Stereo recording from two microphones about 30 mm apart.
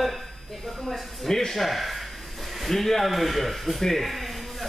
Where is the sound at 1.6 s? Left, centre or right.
Centre.